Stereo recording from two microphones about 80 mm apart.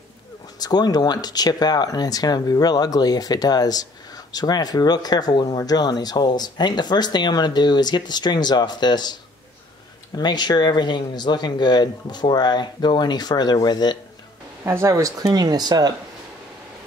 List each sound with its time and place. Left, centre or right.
0.6 s speech: left
5.6 s speech: left
10.1 s speech: left
14.6 s speech: right
15.0 s speech: right